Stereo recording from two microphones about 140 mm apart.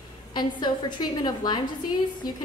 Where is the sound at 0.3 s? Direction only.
30° left (ahead or behind).